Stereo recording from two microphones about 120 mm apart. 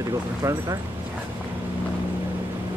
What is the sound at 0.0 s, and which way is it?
Speech, 30° right (ahead or behind).